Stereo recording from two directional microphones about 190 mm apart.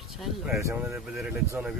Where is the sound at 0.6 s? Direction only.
15° right (ahead or behind).